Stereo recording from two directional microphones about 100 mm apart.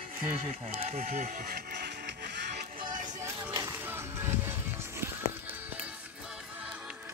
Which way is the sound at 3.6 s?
25° right (ahead or behind).